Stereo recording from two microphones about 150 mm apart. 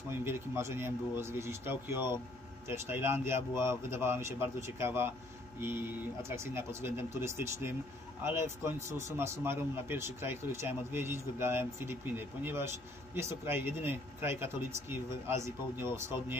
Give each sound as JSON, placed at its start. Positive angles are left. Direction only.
{"t": 0.2, "sound": "a man's voice", "side_deg": -15}